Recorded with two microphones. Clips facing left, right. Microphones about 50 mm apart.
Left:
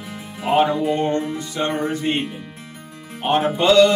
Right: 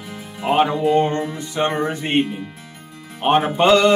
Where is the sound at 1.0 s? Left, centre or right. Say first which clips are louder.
Right 1 dB; right.